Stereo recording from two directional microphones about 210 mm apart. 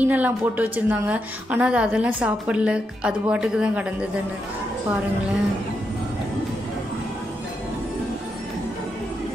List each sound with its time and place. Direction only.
0.0 s a woman's voice: 10° right (ahead or behind)